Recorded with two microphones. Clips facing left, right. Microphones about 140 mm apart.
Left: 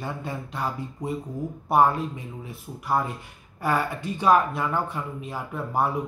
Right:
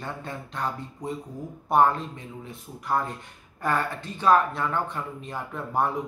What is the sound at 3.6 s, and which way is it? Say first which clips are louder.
Speech: left 2 dB; 10° left (ahead or behind).